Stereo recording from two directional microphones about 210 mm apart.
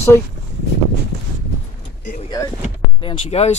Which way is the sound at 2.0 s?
40° left (ahead or behind).